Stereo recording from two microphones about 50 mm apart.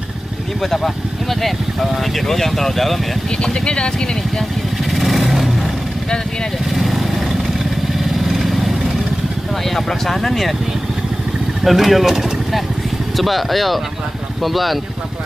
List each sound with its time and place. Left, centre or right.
0.6 s speech: centre
3.3 s speech: centre
4.9 s vehicle: centre
6.7 s vehicle: centre
9.7 s speech: centre
11.6 s speech: centre